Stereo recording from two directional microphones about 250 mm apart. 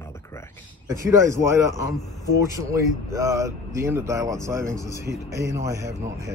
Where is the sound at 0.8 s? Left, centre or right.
Centre.